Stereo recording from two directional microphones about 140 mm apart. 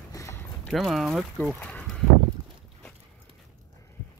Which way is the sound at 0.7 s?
Centre (ahead or behind).